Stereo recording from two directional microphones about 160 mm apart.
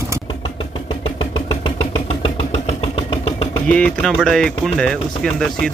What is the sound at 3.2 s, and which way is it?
Engine, 35° left (ahead or behind).